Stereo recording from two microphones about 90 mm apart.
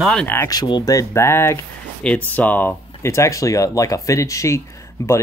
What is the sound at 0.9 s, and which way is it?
Speech, 30° left (ahead or behind).